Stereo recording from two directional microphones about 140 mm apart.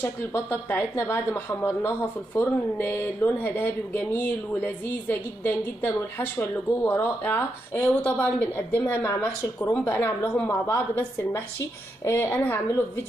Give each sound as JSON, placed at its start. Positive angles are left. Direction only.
{"t": 0.0, "sound": "a woman's voice", "side_deg": 15}
{"t": 12.0, "sound": "a woman's voice", "side_deg": 15}